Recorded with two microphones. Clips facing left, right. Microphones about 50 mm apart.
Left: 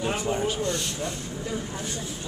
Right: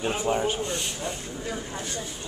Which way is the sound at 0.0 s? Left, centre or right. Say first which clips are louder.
Right 1 dB; centre.